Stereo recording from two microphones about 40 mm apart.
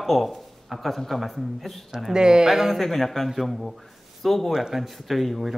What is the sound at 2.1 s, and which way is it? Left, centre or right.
Speech, centre.